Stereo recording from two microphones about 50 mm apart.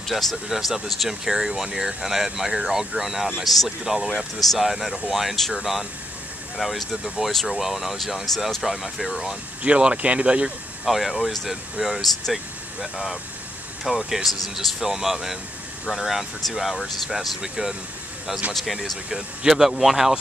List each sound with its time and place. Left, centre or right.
0.0 s speech: centre
9.6 s speech: right
10.9 s speech: centre